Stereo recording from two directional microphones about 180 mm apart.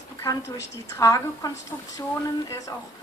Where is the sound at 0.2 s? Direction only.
15° left (ahead or behind).